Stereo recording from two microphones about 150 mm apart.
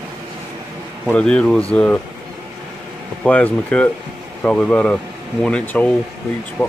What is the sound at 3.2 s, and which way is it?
Speech, 10° left (ahead or behind).